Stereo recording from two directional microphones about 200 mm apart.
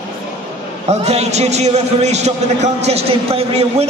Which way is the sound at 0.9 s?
35° right (ahead or behind).